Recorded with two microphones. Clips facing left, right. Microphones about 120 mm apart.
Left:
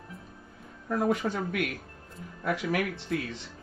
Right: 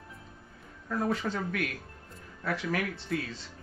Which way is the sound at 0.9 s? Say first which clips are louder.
Left 3 dB; 15° left (ahead or behind).